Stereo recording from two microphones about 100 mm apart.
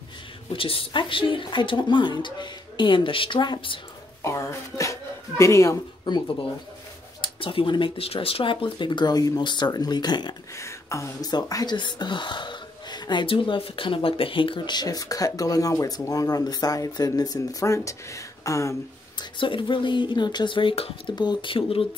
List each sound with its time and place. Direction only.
0.5 s a woman's voice: 65° left (ahead or behind)
4.2 s speech: 30° left (ahead or behind)
7.2 s speech: 60° left (ahead or behind)
10.5 s speech: 30° left (ahead or behind)
19.1 s a woman's voice: 55° left (ahead or behind)
21.1 s a woman's voice: 45° left (ahead or behind); by 21.8 s 65° left (ahead or behind)